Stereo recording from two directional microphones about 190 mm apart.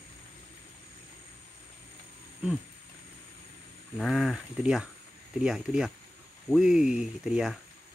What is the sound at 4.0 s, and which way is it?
Speech, centre (ahead or behind).